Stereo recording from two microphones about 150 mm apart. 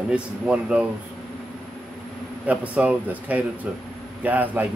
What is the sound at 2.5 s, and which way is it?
A man's voice, 10° right (ahead or behind).